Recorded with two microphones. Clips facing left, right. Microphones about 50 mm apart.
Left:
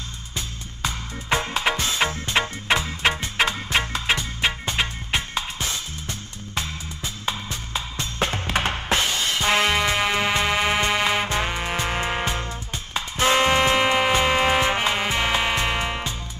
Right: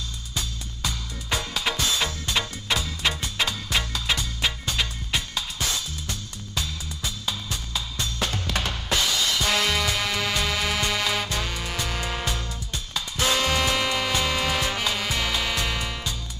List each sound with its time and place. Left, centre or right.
0.4 s music: left